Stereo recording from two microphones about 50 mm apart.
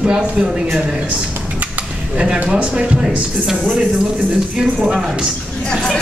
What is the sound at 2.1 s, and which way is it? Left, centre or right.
Speech, centre.